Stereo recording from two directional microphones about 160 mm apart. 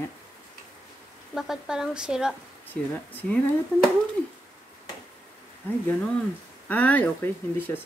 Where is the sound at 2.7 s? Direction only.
10° left (ahead or behind).